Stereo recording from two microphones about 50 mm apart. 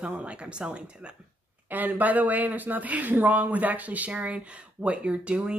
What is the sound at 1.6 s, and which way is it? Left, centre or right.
Speech, right.